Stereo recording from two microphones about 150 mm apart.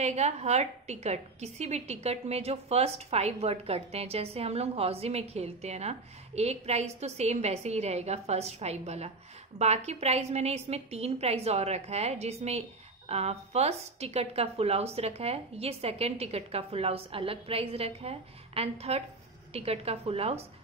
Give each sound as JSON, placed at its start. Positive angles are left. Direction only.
{"t": 0.0, "sound": "a woman's voice", "side_deg": -50}